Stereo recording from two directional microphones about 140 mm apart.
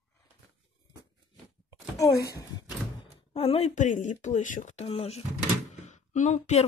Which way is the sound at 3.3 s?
45° left (ahead or behind).